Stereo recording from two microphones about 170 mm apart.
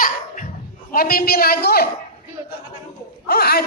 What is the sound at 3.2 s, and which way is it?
Speech, 65° left (ahead or behind).